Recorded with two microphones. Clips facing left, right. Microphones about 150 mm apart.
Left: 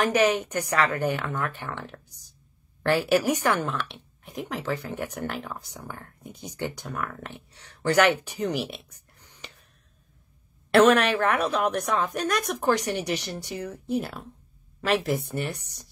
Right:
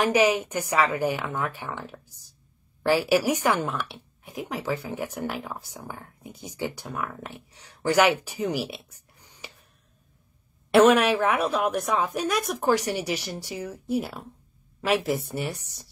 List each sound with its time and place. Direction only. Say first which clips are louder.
0.0 s speech: right 1 dB; 10° right (ahead or behind)
3.0 s speech: even; 10° right (ahead or behind)
10.7 s speech: right 1 dB; 10° right (ahead or behind)